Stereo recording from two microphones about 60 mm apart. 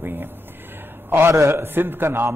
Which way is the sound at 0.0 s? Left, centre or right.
Right.